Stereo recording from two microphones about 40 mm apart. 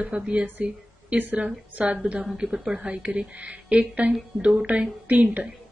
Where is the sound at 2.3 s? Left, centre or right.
Centre.